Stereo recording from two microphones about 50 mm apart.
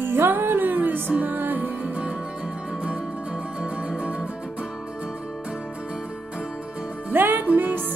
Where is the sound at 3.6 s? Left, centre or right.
Right.